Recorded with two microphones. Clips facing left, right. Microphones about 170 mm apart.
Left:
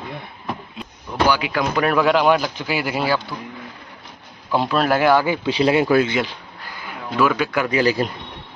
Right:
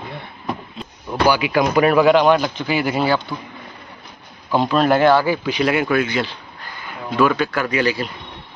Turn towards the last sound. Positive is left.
turn(degrees=30)  # may be behind; listen again after turning